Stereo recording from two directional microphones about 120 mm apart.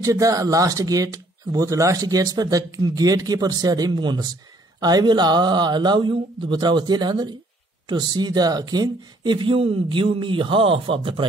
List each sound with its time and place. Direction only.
0.0 s speech: 30° right (ahead or behind); by 11.2 s 45° right (ahead or behind)